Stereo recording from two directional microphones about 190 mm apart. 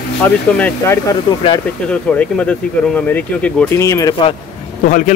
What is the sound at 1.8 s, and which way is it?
Speech, 5° left (ahead or behind).